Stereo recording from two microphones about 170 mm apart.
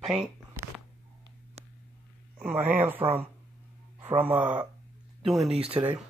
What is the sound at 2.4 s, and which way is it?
Speech, 10° right (ahead or behind).